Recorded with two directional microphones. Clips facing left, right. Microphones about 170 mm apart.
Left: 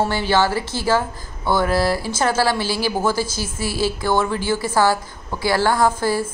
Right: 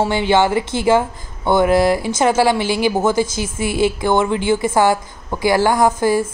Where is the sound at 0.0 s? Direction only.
20° right (ahead or behind).